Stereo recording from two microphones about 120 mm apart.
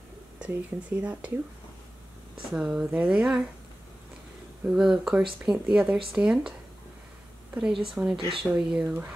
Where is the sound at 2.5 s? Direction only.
5° right (ahead or behind).